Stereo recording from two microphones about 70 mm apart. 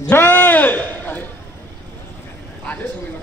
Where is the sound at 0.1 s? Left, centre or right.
Left.